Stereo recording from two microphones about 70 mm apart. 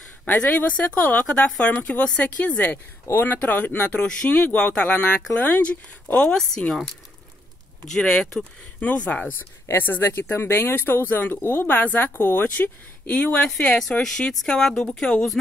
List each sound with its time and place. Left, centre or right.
0.4 s a woman's voice: centre
5.5 s speech: left
6.1 s a woman's voice: centre
7.9 s a woman's voice: centre
8.7 s speech: centre
13.5 s a woman's voice: centre